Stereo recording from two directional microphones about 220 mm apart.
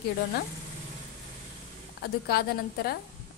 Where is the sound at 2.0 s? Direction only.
45° left (ahead or behind).